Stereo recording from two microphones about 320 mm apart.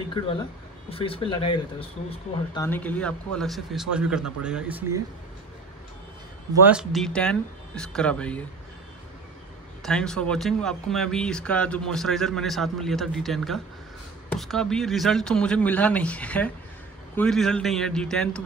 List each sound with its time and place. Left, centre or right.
0.8 s speech: centre
6.6 s speech: centre
9.8 s speech: centre